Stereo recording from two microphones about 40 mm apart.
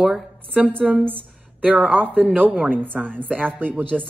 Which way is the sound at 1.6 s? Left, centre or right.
Right.